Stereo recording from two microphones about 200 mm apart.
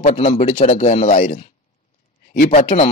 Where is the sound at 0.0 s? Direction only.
35° left (ahead or behind).